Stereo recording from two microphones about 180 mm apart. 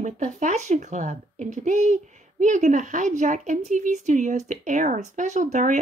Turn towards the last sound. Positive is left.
turn(degrees=-45)  # may be behind; listen again after turning